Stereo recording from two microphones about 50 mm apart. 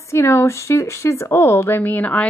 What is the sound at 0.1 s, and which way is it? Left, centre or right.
Speech, left.